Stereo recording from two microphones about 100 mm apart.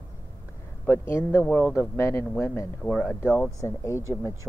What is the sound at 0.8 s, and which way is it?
Speech, 25° left (ahead or behind).